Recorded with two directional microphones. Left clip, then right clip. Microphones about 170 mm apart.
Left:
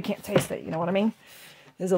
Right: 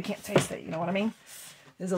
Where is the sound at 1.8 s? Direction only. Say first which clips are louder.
Left 7 dB; 50° left (ahead or behind).